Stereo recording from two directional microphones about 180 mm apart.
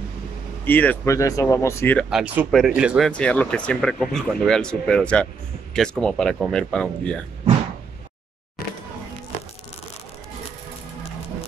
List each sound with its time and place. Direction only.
0.7 s speech: 10° left (ahead or behind)
2.0 s speech: 5° right (ahead or behind)
3.1 s speech: 5° left (ahead or behind)